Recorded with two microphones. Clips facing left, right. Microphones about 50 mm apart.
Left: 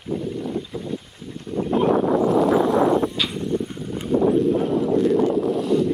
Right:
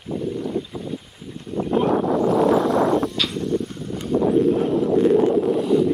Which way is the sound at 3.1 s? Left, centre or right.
Centre.